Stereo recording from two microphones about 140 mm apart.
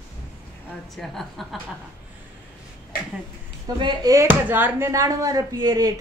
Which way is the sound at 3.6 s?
30° right (ahead or behind).